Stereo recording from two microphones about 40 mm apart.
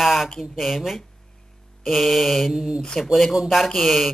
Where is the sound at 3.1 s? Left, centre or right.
Centre.